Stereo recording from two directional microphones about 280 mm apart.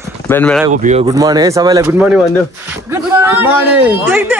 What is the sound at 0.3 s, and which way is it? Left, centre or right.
Speech, centre.